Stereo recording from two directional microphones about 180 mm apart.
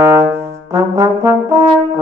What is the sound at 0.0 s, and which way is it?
Brass instrument, 15° right (ahead or behind).